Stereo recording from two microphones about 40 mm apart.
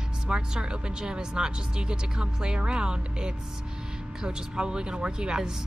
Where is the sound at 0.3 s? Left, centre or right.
Right.